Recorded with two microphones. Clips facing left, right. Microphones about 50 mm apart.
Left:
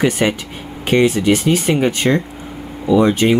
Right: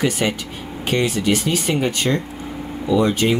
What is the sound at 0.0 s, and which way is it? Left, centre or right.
Speech, left.